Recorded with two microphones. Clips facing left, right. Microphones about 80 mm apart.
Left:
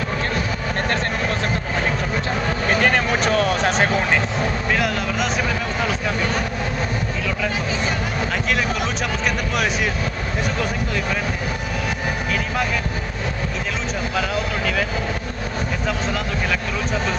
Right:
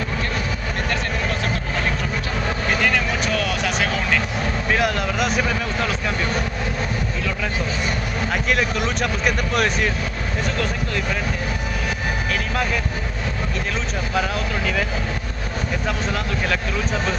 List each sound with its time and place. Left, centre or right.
2.8 s vehicle: left
4.6 s vehicle: centre
8.5 s vehicle: centre